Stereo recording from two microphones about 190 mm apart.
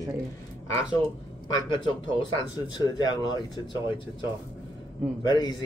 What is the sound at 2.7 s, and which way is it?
Speech, 20° left (ahead or behind).